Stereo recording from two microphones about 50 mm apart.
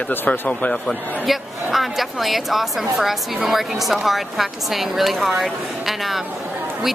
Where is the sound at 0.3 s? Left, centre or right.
Left.